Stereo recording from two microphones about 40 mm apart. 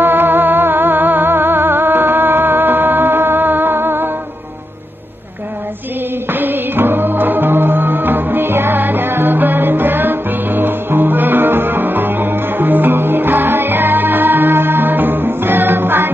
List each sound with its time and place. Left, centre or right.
0.0 s music: right
6.3 s music: right